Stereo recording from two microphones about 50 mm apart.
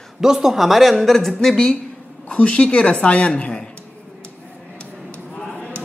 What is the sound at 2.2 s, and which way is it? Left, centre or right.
Speech, left.